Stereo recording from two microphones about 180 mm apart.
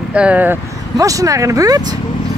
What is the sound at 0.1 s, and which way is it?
Speech, 5° right (ahead or behind).